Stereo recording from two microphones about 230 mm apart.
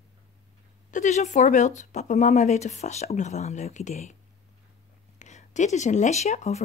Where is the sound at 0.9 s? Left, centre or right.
Left.